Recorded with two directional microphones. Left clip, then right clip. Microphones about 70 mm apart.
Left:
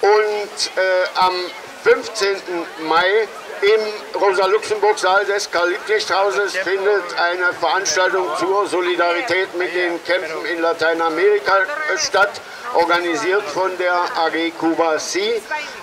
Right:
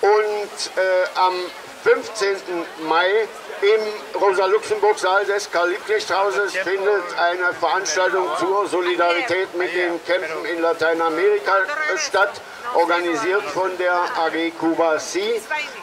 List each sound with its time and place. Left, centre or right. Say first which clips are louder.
0.0 s a man's voice: left 2 dB; centre